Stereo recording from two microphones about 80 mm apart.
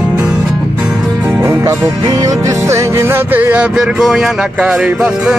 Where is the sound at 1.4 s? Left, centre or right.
Right.